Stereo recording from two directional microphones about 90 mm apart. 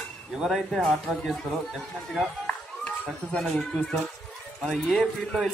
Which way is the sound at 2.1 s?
5° left (ahead or behind).